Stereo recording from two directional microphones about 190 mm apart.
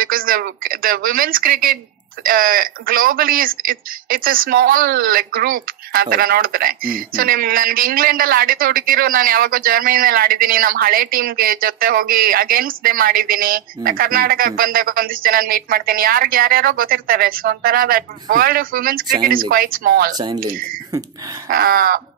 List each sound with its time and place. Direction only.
0.0 s speech: 50° right (ahead or behind)
21.5 s speech: 50° right (ahead or behind)